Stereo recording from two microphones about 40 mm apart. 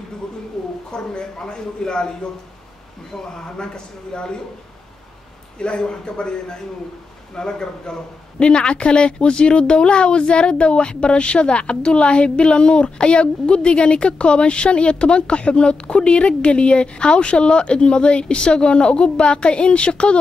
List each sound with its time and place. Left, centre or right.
0.9 s speech: centre
3.5 s speech: centre
5.6 s speech: left
7.3 s speech: centre